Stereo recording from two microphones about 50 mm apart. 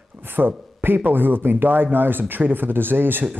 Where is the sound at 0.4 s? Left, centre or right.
Right.